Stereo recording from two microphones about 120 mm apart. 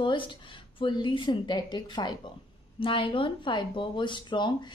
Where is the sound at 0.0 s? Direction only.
45° left (ahead or behind).